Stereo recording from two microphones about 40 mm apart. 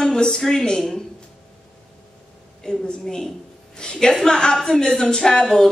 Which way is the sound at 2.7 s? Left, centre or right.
Centre.